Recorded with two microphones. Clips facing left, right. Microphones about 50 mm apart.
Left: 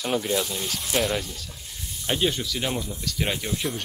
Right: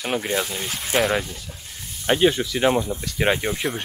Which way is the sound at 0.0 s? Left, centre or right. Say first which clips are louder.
Right 1 dB; right.